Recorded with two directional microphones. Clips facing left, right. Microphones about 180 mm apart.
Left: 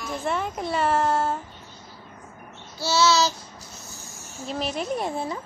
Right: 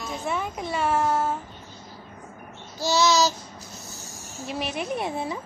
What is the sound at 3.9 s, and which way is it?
Snake, 35° right (ahead or behind).